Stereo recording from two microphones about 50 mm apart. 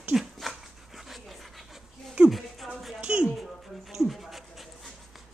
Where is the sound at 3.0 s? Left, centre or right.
Right.